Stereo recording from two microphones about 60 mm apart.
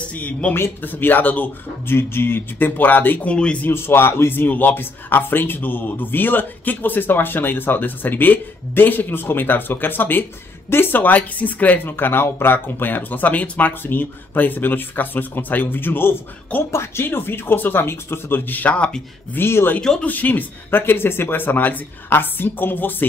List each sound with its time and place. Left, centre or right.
0.1 s speech: left
1.9 s speech: left
3.3 s speech: centre
3.6 s speech: left
18.7 s speech: centre
19.3 s speech: left
19.8 s speech: centre
20.1 s speech: left